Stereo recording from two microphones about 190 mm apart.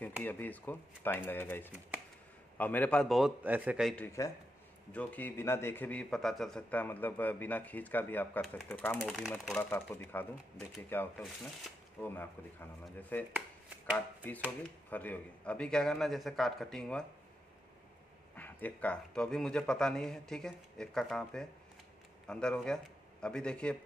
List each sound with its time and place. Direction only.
0.2 s a man's voice: 10° left (ahead or behind); by 3.9 s 5° right (ahead or behind)
3.9 s a man's voice: 10° left (ahead or behind)
18.3 s a man's voice: 10° left (ahead or behind)